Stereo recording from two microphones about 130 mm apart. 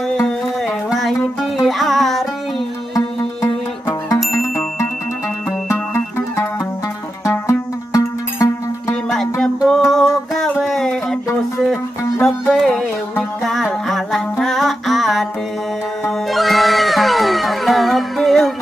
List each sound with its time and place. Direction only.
0.8 s music: centre (ahead or behind)
5.7 s music: 20° left (ahead or behind)
9.1 s music: 5° left (ahead or behind)
14.4 s mantra: centre (ahead or behind)
16.3 s music: centre (ahead or behind)